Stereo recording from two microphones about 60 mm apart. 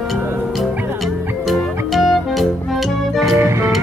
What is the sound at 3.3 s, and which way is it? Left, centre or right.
Music, right.